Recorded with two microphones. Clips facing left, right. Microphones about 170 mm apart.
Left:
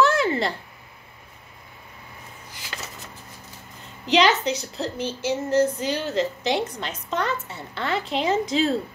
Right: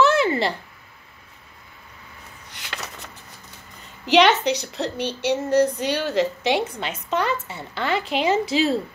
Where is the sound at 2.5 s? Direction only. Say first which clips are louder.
Right 3 dB; 65° right (ahead or behind).